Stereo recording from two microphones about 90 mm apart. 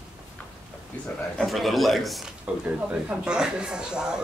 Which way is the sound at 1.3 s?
Centre (ahead or behind).